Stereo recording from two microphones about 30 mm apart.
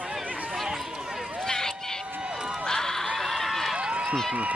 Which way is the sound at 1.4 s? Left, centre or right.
Centre.